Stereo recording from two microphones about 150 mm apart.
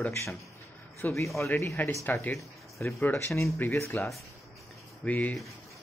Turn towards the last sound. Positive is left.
turn(degrees=10)  # may be behind; listen again after turning